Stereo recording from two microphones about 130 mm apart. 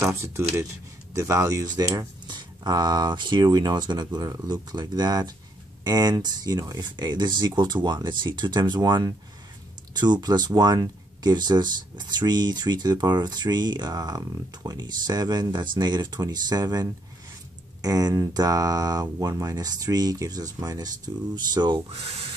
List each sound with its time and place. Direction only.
0.0 s speech: 20° right (ahead or behind)
21.8 s speech: 50° right (ahead or behind)